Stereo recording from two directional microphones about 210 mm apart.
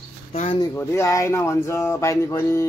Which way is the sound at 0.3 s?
25° left (ahead or behind).